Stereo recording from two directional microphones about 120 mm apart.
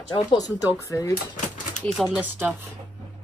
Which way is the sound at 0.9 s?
25° left (ahead or behind).